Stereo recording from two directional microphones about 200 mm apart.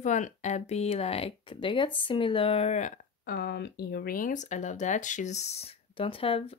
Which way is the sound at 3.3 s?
55° left (ahead or behind).